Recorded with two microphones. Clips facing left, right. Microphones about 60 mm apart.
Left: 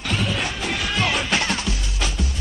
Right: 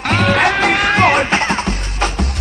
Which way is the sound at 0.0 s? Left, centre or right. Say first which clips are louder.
Right 11 dB; right.